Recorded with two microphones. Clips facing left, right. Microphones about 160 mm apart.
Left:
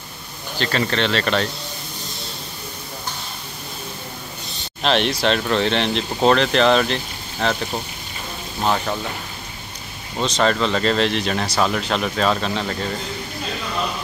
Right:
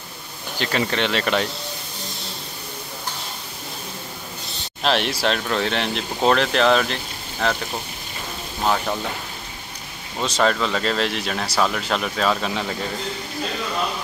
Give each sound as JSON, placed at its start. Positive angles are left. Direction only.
{"t": 0.6, "sound": "speech", "side_deg": -10}
{"t": 4.8, "sound": "speech", "side_deg": -5}
{"t": 8.6, "sound": "speech", "side_deg": 0}
{"t": 10.2, "sound": "speech", "side_deg": -5}